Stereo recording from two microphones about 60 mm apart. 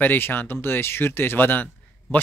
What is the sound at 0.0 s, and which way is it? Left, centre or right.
Speech, left.